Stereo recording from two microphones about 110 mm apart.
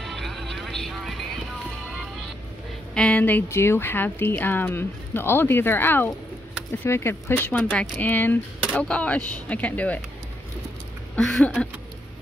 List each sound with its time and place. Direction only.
0.0 s music: centre (ahead or behind)
2.9 s speech: 10° left (ahead or behind)
7.3 s speech: 10° left (ahead or behind)
11.1 s speech: 5° left (ahead or behind)